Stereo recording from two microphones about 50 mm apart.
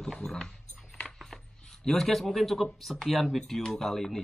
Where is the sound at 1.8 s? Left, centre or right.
Centre.